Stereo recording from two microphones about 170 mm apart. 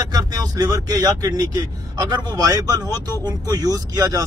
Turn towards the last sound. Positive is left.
turn(degrees=-20)  # may be behind; listen again after turning